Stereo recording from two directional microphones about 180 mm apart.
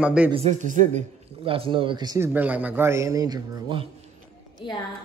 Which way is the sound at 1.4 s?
30° right (ahead or behind).